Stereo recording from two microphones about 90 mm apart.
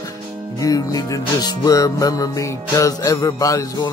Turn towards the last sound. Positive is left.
turn(degrees=40)  # may be behind; listen again after turning